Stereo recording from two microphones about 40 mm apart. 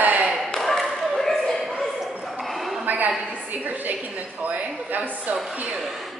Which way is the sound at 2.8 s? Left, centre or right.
Right.